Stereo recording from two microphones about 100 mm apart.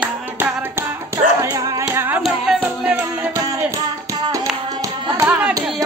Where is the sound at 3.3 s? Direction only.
35° right (ahead or behind).